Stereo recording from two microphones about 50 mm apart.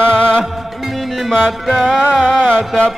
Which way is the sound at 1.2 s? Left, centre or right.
Centre.